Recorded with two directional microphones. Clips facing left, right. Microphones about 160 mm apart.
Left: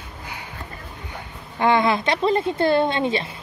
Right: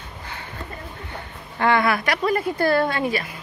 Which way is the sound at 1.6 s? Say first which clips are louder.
Left 1 dB; 20° left (ahead or behind).